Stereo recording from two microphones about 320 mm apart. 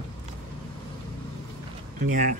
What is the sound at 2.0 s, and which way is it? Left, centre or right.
Speech, right.